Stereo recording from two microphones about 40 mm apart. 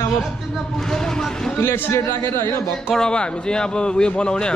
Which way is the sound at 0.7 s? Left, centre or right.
Centre.